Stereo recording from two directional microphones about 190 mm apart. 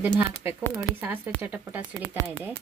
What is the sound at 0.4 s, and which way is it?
Speech, 15° right (ahead or behind).